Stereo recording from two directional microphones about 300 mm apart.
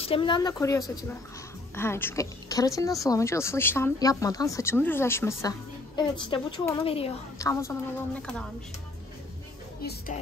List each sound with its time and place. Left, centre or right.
0.0 s a woman's voice: centre
9.8 s speech: left